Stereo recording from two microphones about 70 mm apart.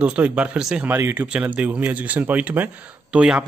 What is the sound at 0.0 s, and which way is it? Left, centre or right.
Speech, centre.